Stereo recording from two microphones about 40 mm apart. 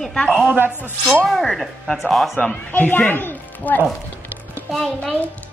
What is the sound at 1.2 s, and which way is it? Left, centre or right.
Child singing, centre.